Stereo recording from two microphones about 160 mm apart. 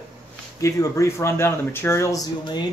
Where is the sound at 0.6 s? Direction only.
20° left (ahead or behind).